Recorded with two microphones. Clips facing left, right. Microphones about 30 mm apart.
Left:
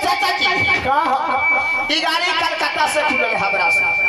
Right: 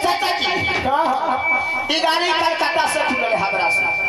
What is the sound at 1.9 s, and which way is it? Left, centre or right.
Speech, left.